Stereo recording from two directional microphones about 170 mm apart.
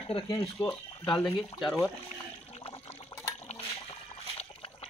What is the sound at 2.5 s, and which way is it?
Water, 35° left (ahead or behind).